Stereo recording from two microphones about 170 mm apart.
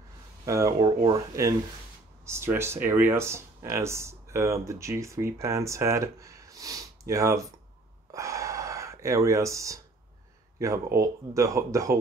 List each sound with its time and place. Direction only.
0.5 s speech: 20° right (ahead or behind)
8.1 s gasp: 20° right (ahead or behind)
10.6 s speech: 15° right (ahead or behind)